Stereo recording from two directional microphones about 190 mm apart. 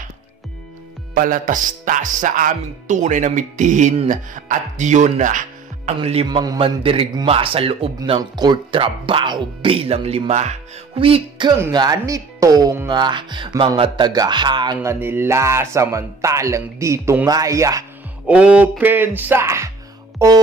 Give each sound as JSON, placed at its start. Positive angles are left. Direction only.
{"t": 1.1, "sound": "music", "side_deg": -45}
{"t": 5.9, "sound": "speech", "side_deg": -30}
{"t": 11.5, "sound": "speech", "side_deg": -15}
{"t": 18.2, "sound": "speech", "side_deg": -5}